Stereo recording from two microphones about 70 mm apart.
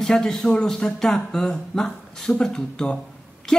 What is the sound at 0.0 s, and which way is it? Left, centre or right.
A man's voice, centre.